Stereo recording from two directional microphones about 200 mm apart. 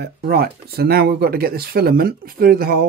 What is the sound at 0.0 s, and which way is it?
Speech, 55° right (ahead or behind).